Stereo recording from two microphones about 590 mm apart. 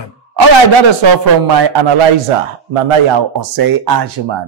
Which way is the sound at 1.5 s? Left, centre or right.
Right.